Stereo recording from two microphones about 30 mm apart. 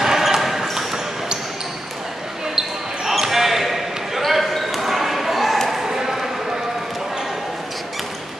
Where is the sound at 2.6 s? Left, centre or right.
Centre.